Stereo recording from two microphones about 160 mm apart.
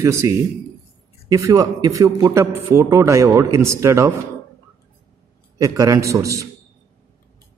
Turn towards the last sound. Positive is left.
turn(degrees=-20)  # may be behind; listen again after turning